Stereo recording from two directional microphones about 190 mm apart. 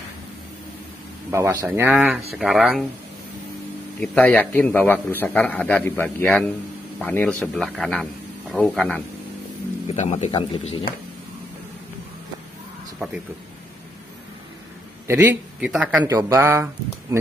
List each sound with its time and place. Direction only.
1.3 s a man's voice: 15° right (ahead or behind)
4.0 s a man's voice: 5° left (ahead or behind)
9.8 s speech: 35° left (ahead or behind)
10.3 s speech: 25° left (ahead or behind)
15.0 s speech: 10° right (ahead or behind)